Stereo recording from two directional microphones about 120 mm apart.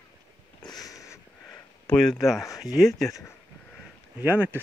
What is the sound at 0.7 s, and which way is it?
Sniff, 30° left (ahead or behind).